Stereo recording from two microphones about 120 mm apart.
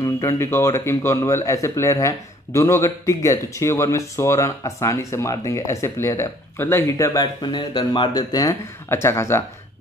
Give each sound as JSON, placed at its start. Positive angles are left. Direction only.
{"t": 0.0, "sound": "speech", "side_deg": 25}
{"t": 7.4, "sound": "speech", "side_deg": 40}